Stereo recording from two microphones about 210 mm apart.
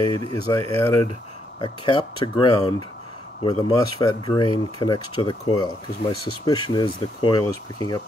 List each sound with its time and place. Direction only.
0.0 s speech: 20° left (ahead or behind)